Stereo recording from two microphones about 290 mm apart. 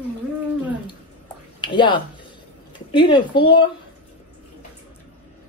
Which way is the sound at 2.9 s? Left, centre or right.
Centre.